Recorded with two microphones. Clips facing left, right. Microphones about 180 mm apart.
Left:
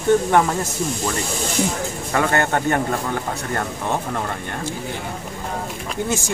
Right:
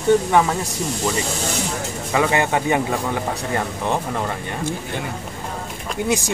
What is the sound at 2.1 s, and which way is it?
Speech, 5° right (ahead or behind).